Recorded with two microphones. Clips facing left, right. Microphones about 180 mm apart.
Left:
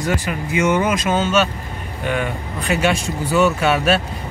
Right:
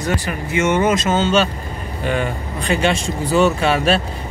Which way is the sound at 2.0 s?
Centre (ahead or behind).